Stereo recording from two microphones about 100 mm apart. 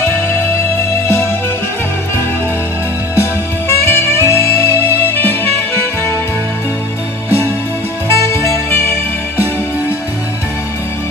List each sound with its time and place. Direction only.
1.0 s music: 25° left (ahead or behind)
3.2 s saxophone: 25° left (ahead or behind)
8.1 s music: 30° left (ahead or behind)